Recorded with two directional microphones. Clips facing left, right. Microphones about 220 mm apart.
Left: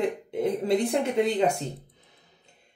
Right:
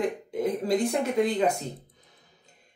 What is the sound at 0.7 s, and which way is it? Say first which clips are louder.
Speech: left 1 dB; 25° left (ahead or behind).